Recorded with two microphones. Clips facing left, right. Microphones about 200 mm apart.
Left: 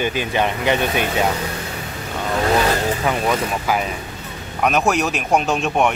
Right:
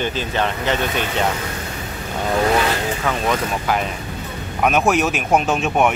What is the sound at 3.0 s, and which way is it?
Speech, 15° left (ahead or behind).